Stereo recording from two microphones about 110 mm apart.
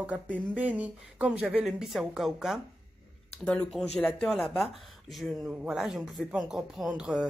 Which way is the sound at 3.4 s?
10° left (ahead or behind).